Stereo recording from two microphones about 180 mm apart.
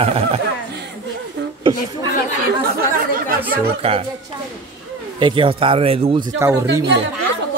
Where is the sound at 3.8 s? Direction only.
35° right (ahead or behind).